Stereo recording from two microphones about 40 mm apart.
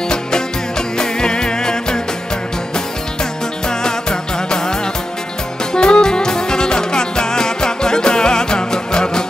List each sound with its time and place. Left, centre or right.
0.1 s music: centre
3.6 s music: centre